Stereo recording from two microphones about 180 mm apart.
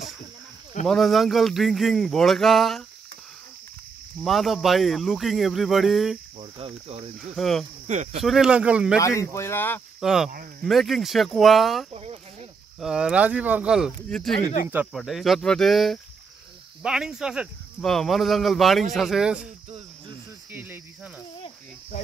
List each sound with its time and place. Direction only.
0.8 s speech: centre (ahead or behind)
4.2 s speech: centre (ahead or behind)
6.3 s cricket: 30° right (ahead or behind)
7.3 s speech: centre (ahead or behind)
7.8 s speech: 40° right (ahead or behind)
8.2 s speech: centre (ahead or behind)
9.0 s speech: 15° left (ahead or behind)
9.9 s speech: centre (ahead or behind)
11.9 s a sound: 35° right (ahead or behind)
12.8 s speech: 5° right (ahead or behind)
14.7 s speech: 10° right (ahead or behind)
20.5 s cricket: 10° right (ahead or behind)